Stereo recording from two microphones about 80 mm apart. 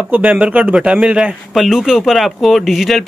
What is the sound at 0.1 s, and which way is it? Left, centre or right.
Speech, centre.